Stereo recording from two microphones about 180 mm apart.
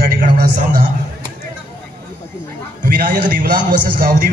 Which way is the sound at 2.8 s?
55° right (ahead or behind).